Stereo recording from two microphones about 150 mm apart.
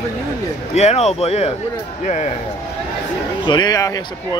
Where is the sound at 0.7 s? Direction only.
45° left (ahead or behind).